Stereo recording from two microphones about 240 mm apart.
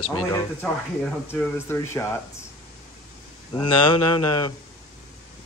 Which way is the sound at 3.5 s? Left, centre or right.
Centre.